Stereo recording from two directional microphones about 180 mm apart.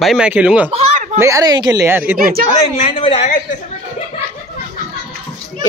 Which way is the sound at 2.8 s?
30° left (ahead or behind).